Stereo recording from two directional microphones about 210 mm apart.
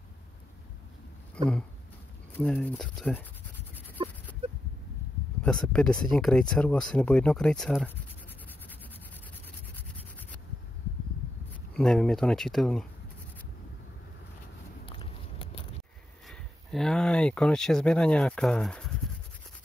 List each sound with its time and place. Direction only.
2.3 s speech: 5° left (ahead or behind)
4.0 s a sound: 25° right (ahead or behind)
5.4 s speech: 5° left (ahead or behind)
9.8 s a sound: 10° left (ahead or behind)
11.7 s speech: centre (ahead or behind)
14.9 s biting: 25° left (ahead or behind)
16.3 s speech: centre (ahead or behind)